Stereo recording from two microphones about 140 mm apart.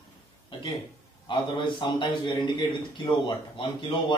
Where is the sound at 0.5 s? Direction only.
35° left (ahead or behind).